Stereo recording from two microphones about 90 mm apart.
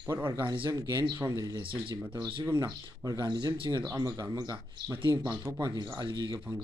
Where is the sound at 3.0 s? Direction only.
45° right (ahead or behind).